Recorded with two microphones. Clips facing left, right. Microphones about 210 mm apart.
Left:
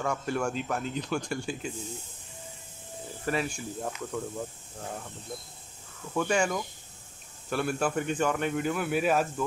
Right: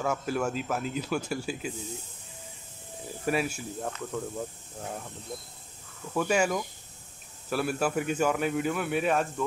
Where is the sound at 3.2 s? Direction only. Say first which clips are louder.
Right 2 dB; 10° right (ahead or behind).